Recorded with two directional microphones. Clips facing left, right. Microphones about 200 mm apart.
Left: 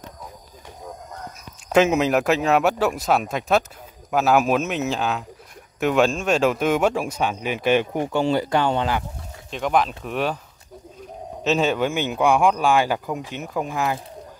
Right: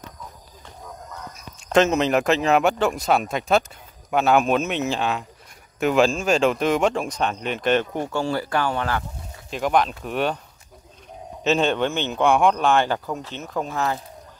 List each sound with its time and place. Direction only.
1.7 s speech: 5° left (ahead or behind)
9.5 s speech: centre (ahead or behind)
11.4 s speech: 5° left (ahead or behind)